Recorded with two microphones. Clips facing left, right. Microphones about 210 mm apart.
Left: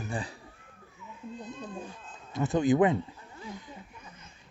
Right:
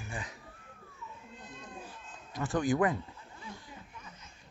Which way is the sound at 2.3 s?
25° left (ahead or behind).